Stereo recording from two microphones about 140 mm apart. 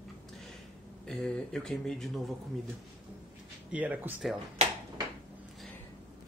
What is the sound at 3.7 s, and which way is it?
Speech, 10° right (ahead or behind).